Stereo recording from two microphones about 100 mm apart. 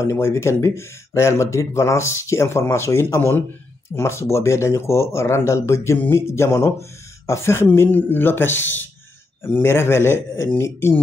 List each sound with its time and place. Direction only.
0.0 s speech: 30° left (ahead or behind)